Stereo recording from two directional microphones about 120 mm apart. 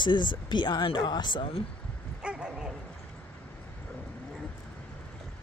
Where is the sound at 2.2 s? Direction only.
10° right (ahead or behind).